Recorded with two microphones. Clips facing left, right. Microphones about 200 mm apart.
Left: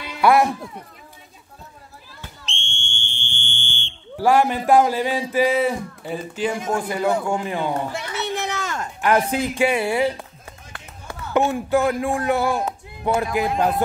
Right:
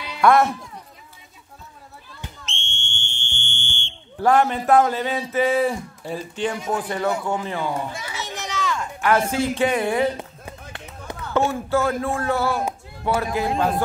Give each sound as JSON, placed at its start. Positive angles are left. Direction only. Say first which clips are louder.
{"t": 0.2, "sound": "speech", "louder": "even", "side_deg": 5}
{"t": 2.4, "sound": "a sound", "louder": "left 1 dB", "side_deg": 15}
{"t": 3.3, "sound": "fire alarm", "louder": "even", "side_deg": -15}
{"t": 4.2, "sound": "speech", "louder": "left 1 dB", "side_deg": 10}
{"t": 7.9, "sound": "children playing", "louder": "left 6 dB", "side_deg": 60}
{"t": 9.0, "sound": "speech", "louder": "left 1 dB", "side_deg": 20}
{"t": 11.3, "sound": "speech", "louder": "left 2 dB", "side_deg": 15}